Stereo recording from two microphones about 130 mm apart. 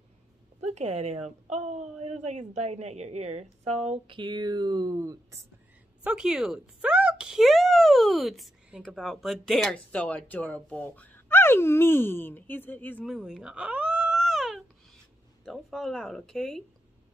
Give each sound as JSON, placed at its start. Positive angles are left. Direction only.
{"t": 0.7, "sound": "a woman's voice", "side_deg": -55}
{"t": 6.0, "sound": "speech", "side_deg": -5}
{"t": 13.0, "sound": "cat", "side_deg": -5}
{"t": 15.4, "sound": "speech", "side_deg": 0}